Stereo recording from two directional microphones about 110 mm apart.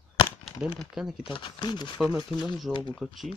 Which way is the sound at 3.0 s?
Centre (ahead or behind).